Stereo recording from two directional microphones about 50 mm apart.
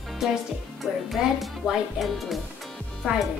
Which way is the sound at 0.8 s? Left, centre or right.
Centre.